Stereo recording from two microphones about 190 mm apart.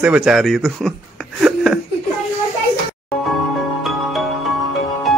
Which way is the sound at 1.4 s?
5° right (ahead or behind).